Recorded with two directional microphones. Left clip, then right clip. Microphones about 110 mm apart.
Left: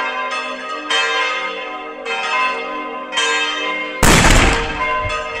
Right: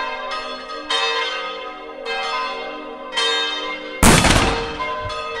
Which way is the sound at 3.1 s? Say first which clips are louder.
Left 2 dB; 45° right (ahead or behind).